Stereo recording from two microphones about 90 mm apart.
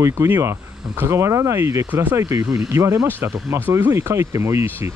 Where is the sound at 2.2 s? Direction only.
35° right (ahead or behind).